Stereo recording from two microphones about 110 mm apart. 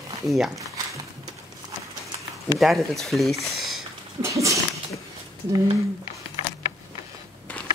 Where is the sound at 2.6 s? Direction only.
Centre (ahead or behind).